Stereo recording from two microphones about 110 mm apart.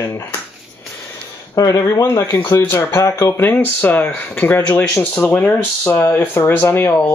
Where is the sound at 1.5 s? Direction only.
30° left (ahead or behind).